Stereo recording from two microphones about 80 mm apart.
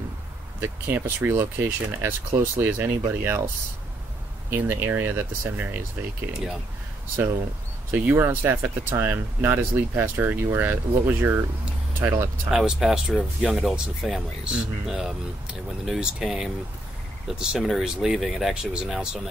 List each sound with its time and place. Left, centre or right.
0.6 s speech: right
4.5 s speech: right
7.9 s speech: right
12.4 s speech: centre